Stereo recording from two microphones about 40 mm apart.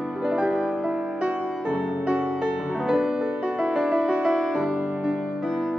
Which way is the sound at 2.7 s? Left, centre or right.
Centre.